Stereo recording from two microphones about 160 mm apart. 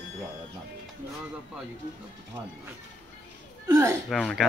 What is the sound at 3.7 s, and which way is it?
Speech, 20° right (ahead or behind).